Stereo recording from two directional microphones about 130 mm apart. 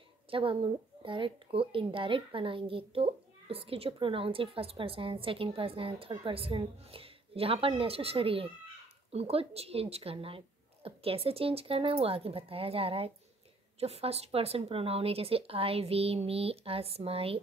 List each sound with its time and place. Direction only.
0.3 s a woman's voice: 45° right (ahead or behind)